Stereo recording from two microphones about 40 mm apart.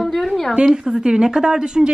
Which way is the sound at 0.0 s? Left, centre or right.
Centre.